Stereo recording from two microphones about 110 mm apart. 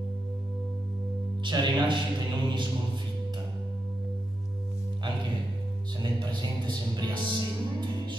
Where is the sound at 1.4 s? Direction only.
45° right (ahead or behind).